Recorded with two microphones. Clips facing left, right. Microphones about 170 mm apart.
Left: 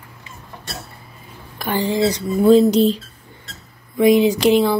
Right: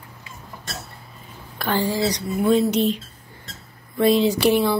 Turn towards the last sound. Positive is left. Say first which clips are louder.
# left 3 dB
turn(degrees=15)  # may be behind; listen again after turning